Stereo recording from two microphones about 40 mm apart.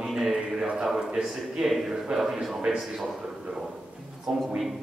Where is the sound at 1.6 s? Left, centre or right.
Centre.